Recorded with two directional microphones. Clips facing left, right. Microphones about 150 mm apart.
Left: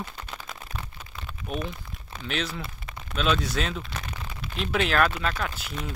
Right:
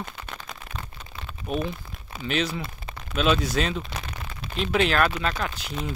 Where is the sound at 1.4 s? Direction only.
30° right (ahead or behind).